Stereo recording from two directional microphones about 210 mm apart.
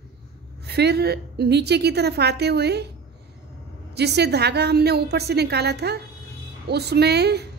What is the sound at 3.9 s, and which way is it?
A woman's voice, 50° right (ahead or behind).